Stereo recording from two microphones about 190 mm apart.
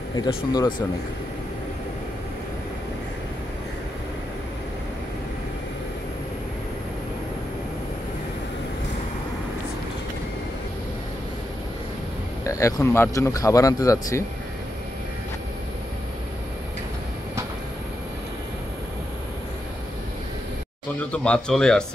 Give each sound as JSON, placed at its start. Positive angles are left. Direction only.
{"t": 0.1, "sound": "speech", "side_deg": 20}
{"t": 12.4, "sound": "speech", "side_deg": 15}
{"t": 21.0, "sound": "speech", "side_deg": 5}